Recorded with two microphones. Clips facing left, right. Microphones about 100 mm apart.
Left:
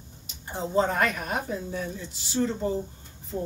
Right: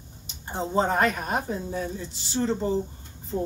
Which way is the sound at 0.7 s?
30° right (ahead or behind).